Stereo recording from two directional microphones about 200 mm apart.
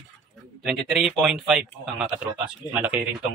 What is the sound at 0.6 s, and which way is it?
Speech, centre (ahead or behind).